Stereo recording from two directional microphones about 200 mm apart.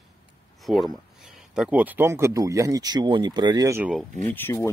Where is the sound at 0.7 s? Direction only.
Centre (ahead or behind).